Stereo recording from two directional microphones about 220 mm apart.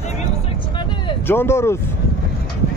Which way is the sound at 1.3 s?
10° left (ahead or behind).